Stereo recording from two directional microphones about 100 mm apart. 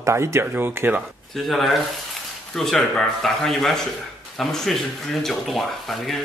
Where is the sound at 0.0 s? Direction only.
30° right (ahead or behind).